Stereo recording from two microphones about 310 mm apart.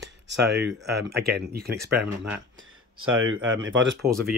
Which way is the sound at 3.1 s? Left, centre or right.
Right.